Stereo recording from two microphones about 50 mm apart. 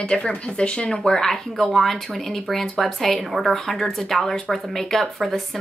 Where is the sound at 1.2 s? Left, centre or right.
Centre.